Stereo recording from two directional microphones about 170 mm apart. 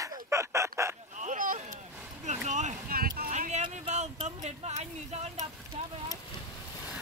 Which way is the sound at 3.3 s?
45° right (ahead or behind).